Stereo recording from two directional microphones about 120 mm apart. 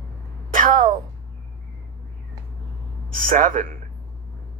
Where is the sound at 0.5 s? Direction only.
90° right.